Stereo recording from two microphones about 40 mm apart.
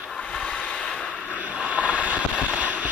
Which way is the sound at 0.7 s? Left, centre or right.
Centre.